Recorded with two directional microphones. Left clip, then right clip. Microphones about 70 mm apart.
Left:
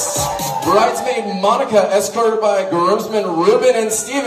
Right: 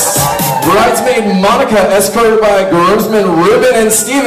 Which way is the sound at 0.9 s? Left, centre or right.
Centre.